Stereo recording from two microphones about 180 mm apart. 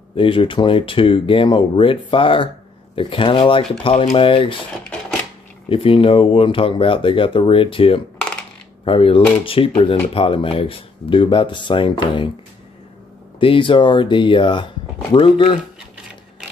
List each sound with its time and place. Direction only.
0.1 s speech: 30° left (ahead or behind)
5.7 s speech: 30° left (ahead or behind)
13.4 s speech: 30° left (ahead or behind)